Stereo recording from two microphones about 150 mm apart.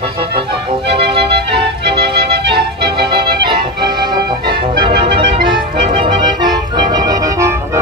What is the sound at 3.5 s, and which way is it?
Music, 30° right (ahead or behind).